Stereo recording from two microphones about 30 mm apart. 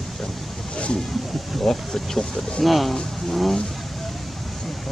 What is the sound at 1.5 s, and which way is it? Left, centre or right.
Speech, centre.